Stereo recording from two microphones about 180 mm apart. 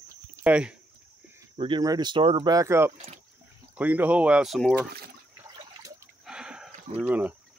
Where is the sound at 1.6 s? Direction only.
25° right (ahead or behind).